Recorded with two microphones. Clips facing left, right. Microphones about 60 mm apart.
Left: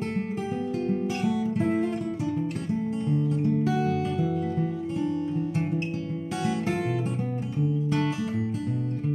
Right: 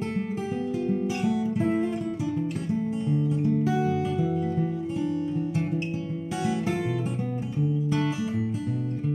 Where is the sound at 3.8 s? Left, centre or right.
Centre.